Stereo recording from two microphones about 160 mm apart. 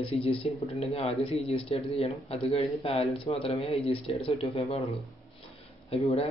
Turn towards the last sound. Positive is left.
turn(degrees=35)  # may be behind; listen again after turning